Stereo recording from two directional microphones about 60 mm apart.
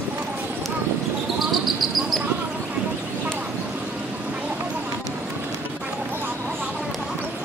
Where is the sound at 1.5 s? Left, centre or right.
Centre.